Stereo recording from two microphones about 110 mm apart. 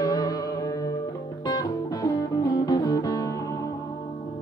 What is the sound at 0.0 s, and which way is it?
Music, 35° left (ahead or behind).